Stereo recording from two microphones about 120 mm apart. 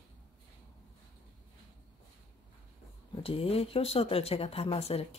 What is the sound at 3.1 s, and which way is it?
Speech, 50° left (ahead or behind).